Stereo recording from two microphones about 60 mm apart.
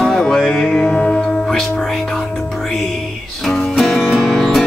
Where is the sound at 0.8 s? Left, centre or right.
Centre.